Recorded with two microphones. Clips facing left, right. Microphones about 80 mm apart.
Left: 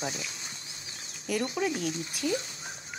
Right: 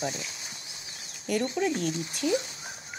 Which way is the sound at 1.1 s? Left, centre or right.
Centre.